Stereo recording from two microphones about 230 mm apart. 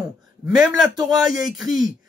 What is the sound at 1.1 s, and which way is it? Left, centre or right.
Speech, centre.